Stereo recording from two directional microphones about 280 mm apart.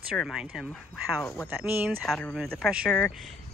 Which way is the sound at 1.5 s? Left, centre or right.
Centre.